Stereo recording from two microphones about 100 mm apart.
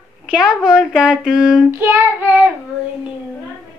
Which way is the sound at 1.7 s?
20° right (ahead or behind).